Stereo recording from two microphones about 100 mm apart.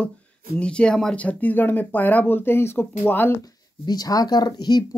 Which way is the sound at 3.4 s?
40° left (ahead or behind).